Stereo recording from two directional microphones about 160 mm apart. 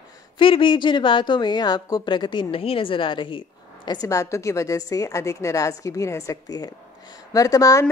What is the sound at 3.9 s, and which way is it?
A woman's voice, 20° left (ahead or behind).